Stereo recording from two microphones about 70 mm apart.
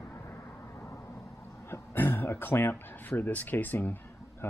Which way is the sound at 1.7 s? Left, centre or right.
Left.